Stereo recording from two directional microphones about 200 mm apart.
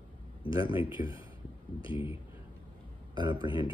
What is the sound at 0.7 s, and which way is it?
Speech, 25° left (ahead or behind).